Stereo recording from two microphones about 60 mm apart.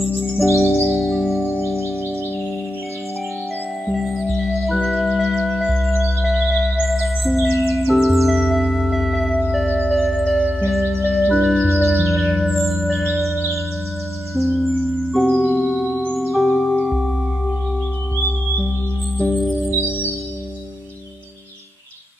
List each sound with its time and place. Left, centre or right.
0.2 s music: centre
3.8 s music: centre
9.8 s singing bowl: centre
10.7 s music: centre
16.8 s singing bowl: centre
19.2 s music: centre